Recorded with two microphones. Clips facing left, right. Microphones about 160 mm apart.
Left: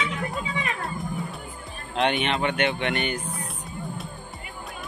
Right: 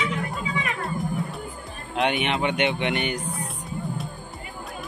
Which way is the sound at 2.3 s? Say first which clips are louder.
Right 1 dB; 20° right (ahead or behind).